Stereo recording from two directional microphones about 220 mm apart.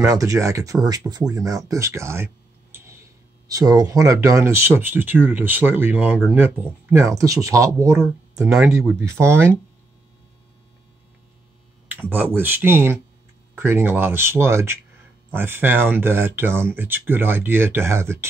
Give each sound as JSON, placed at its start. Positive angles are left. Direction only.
{"t": 0.0, "sound": "speech", "side_deg": -15}
{"t": 8.5, "sound": "speech", "side_deg": 0}
{"t": 11.9, "sound": "speech", "side_deg": -10}